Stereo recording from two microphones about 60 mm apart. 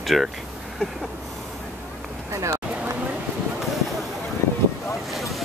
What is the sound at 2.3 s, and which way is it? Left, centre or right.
Speech, right.